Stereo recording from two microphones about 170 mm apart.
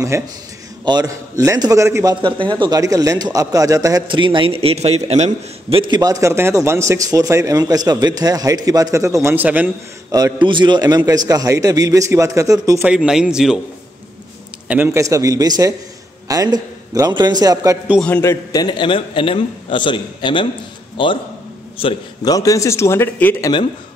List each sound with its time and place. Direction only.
0.1 s a man's voice: 15° right (ahead or behind)
2.2 s a man's voice: 30° right (ahead or behind); by 9.7 s 10° right (ahead or behind)
10.1 s a man's voice: 25° right (ahead or behind)
12.8 s a man's voice: 5° right (ahead or behind)
14.7 s a man's voice: 15° right (ahead or behind)
18.0 s a man's voice: 15° left (ahead or behind); by 22.3 s 30° left (ahead or behind)
22.3 s speech: 20° left (ahead or behind)